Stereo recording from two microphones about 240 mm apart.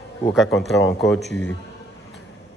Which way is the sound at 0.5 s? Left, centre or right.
Left.